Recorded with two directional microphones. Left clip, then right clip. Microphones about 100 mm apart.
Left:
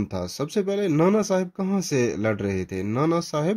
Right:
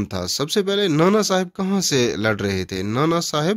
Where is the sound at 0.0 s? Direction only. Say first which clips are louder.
Right 5 dB; 15° right (ahead or behind).